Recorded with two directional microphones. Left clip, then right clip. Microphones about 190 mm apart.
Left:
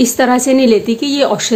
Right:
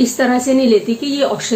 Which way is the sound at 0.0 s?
45° left (ahead or behind).